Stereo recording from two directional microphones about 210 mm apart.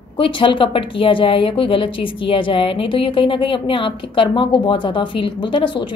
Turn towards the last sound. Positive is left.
turn(degrees=25)  # may be behind; listen again after turning